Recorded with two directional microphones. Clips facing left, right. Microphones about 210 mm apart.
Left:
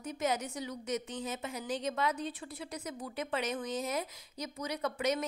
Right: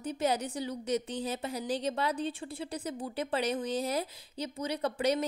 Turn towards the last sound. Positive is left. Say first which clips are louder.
# right 3 dB
turn(degrees=-30)  # may be behind; listen again after turning